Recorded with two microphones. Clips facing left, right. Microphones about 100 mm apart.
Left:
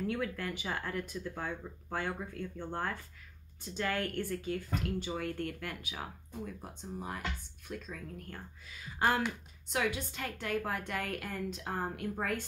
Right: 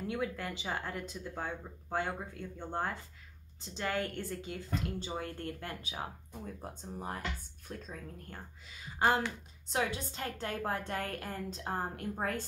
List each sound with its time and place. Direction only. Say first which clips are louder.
0.0 s speech: left 1 dB; 20° right (ahead or behind)